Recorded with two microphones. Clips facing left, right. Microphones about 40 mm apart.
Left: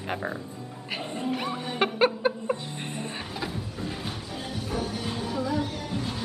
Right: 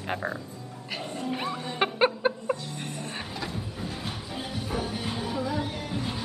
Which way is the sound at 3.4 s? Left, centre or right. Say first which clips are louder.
Left 1 dB; centre.